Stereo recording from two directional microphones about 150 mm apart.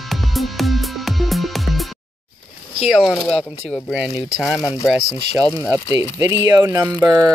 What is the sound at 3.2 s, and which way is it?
Speech, 5° left (ahead or behind).